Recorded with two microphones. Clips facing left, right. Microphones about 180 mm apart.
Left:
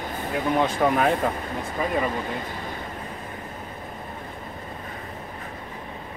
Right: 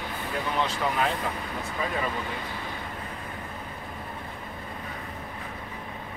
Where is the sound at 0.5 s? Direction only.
50° left (ahead or behind).